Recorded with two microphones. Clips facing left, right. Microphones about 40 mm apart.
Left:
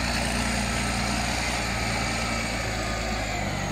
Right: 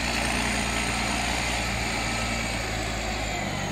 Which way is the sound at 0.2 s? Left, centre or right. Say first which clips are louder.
Right 1 dB; right.